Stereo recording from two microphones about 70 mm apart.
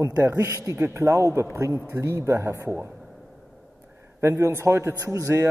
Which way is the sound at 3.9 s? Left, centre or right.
Right.